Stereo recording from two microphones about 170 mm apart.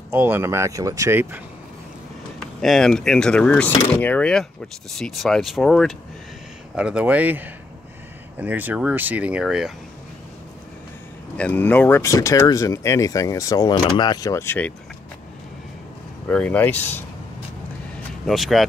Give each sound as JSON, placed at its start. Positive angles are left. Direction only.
{"t": 0.1, "sound": "speech", "side_deg": -15}
{"t": 2.4, "sound": "speech", "side_deg": 0}
{"t": 11.3, "sound": "speech", "side_deg": 10}
{"t": 16.3, "sound": "speech", "side_deg": 5}
{"t": 18.2, "sound": "speech", "side_deg": 0}